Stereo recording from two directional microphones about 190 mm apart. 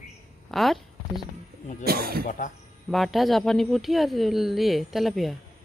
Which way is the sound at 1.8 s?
55° right (ahead or behind).